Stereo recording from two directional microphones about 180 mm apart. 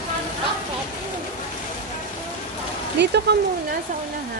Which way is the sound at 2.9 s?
70° right (ahead or behind).